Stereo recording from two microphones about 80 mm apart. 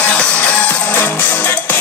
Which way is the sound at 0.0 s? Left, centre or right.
Centre.